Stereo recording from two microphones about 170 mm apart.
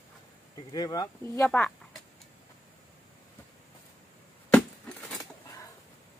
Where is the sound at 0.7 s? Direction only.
20° left (ahead or behind).